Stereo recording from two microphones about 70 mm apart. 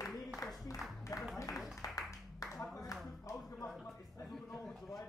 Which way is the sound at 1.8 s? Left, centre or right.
Left.